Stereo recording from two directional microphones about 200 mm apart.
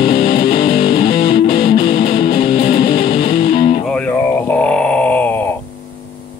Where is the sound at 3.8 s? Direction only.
5° left (ahead or behind).